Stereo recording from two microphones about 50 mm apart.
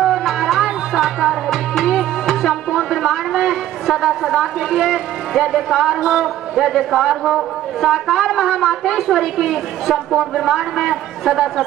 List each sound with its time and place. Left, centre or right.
0.0 s tabla: centre
6.2 s a man's voice: centre